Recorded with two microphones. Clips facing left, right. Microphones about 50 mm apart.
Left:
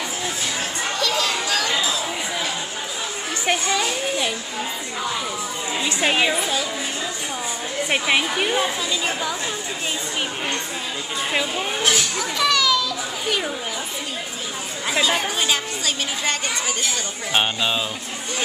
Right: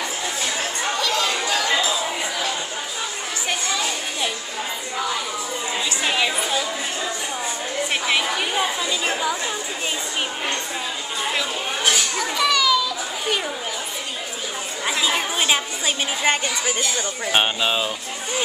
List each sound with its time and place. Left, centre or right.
0.9 s chatter: centre
5.9 s a woman's voice: left
6.3 s a child's voice: centre
7.9 s a woman's voice: centre
8.5 s a child's voice: centre
11.8 s a child's voice: centre
14.9 s chatter: centre
15.4 s a woman's voice: centre